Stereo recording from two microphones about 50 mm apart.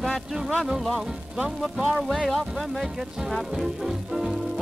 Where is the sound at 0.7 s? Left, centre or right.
Centre.